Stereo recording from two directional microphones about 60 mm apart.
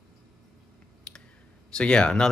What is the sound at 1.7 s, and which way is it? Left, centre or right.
Speech, centre.